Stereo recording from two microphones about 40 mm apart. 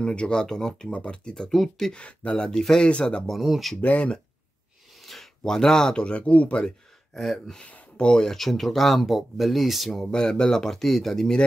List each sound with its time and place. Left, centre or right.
0.0 s speech: left
0.8 s speech: left
1.5 s speech: centre
1.9 s speech: left
2.5 s speech: centre
2.9 s speech: left
5.0 s a sound: centre
5.9 s speech: left
7.2 s speech: centre
7.6 s speech: left
8.2 s speech: centre